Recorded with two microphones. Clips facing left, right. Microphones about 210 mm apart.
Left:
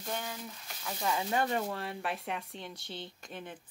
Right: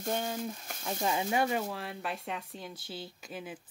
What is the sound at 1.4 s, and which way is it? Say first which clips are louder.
Speech: right 1 dB; 5° right (ahead or behind).